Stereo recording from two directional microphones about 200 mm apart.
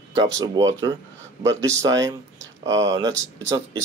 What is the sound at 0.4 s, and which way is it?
Speech, 15° right (ahead or behind).